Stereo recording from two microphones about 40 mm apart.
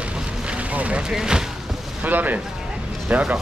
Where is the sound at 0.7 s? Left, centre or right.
Right.